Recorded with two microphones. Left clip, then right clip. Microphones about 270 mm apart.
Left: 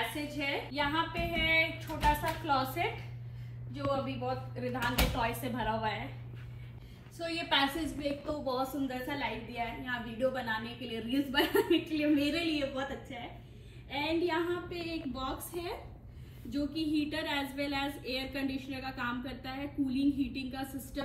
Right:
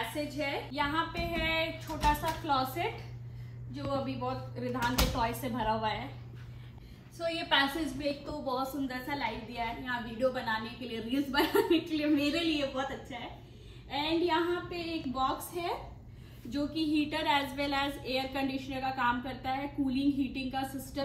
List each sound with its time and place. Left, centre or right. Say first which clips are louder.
0.0 s a woman's voice: right 1 dB; centre
4.9 s speech: right 1 dB; centre
7.2 s a woman's voice: right 2 dB; centre